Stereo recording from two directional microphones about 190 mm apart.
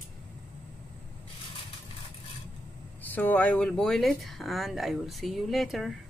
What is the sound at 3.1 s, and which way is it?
Speech, 10° left (ahead or behind).